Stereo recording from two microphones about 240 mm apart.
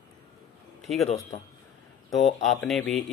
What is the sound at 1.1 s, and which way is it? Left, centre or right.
Speech, left.